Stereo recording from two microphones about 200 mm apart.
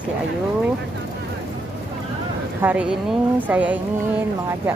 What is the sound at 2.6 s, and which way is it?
Speech, 10° right (ahead or behind).